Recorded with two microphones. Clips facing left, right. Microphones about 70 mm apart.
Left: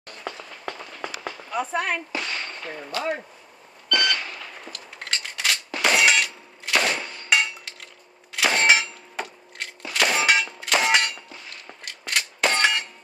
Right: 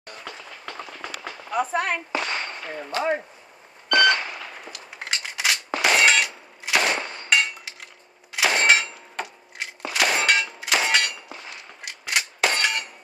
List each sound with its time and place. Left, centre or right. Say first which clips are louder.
0.2 s run: left 6 dB; centre
2.1 s firecracker: right 3 dB; right
2.6 s speech: right 2 dB; centre
2.9 s speech: right 3 dB; right
3.9 s beep: right 6 dB; right
4.4 s gunshot: right 1 dB; centre
5.8 s clang: right 1 dB; centre